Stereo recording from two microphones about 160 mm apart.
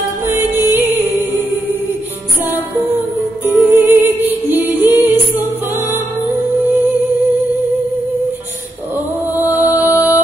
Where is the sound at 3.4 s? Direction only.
15° right (ahead or behind).